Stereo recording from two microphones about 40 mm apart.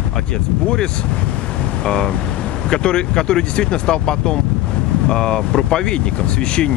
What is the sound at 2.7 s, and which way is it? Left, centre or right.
Speech, left.